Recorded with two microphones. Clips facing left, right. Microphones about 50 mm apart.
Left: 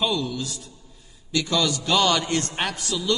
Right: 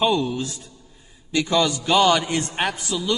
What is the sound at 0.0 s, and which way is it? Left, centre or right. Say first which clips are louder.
A man's voice: right 5 dB; right.